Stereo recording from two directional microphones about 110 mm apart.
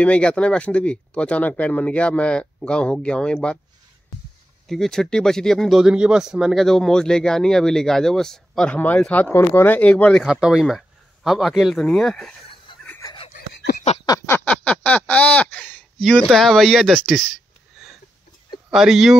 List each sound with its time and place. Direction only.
0.0 s speech: 10° left (ahead or behind)
4.6 s speech: 5° left (ahead or behind)
10.2 s speech: 5° right (ahead or behind)
14.2 s a sound: 25° left (ahead or behind)
14.5 s a sound: 10° left (ahead or behind)
16.0 s speech: 5° left (ahead or behind)
18.7 s speech: 5° right (ahead or behind)